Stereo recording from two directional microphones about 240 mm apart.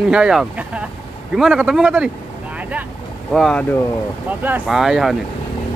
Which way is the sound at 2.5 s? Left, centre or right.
Centre.